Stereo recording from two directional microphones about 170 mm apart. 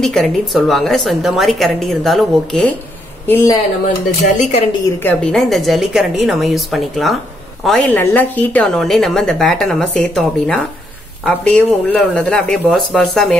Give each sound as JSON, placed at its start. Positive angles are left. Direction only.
{"t": 0.0, "sound": "a woman's voice", "side_deg": 0}
{"t": 3.3, "sound": "a woman's voice", "side_deg": 15}
{"t": 4.3, "sound": "a woman's voice", "side_deg": 45}
{"t": 5.0, "sound": "a woman's voice", "side_deg": 0}